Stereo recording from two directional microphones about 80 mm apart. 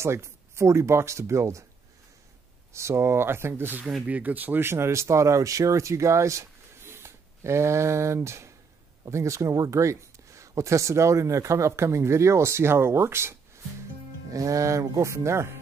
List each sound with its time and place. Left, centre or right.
0.0 s speech: right
2.7 s speech: right
14.3 s speech: right